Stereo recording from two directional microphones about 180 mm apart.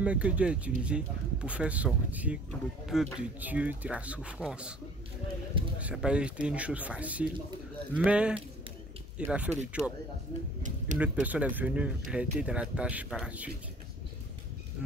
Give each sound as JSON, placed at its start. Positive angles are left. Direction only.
{"t": 0.0, "sound": "speech", "side_deg": -5}
{"t": 5.5, "sound": "speech", "side_deg": -30}
{"t": 5.8, "sound": "speech", "side_deg": -5}
{"t": 11.0, "sound": "speech", "side_deg": -10}